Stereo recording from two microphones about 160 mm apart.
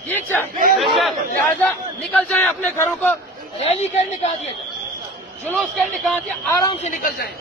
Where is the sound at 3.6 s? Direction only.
40° left (ahead or behind).